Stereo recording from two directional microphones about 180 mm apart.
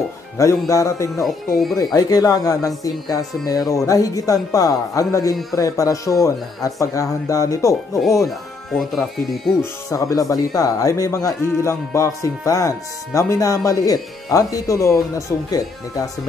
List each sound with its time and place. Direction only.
0.4 s speech: 20° left (ahead or behind)
8.3 s speech: centre (ahead or behind)
9.8 s speech: 20° left (ahead or behind)